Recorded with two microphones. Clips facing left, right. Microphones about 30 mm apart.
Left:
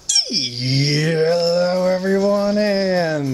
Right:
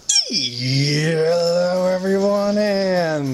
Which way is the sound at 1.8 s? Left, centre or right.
Centre.